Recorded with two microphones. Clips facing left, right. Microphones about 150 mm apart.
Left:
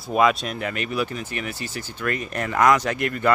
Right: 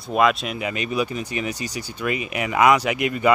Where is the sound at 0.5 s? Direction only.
15° right (ahead or behind).